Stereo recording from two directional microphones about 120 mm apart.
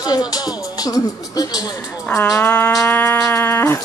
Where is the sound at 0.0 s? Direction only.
30° left (ahead or behind).